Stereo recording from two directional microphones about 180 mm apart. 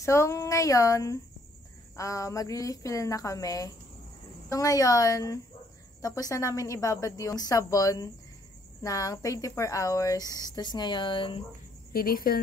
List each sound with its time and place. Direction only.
0.0 s a woman's voice: 15° left (ahead or behind)
11.9 s a woman's voice: 55° left (ahead or behind)